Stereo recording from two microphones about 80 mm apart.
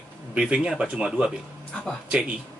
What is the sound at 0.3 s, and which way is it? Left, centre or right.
Speech, centre.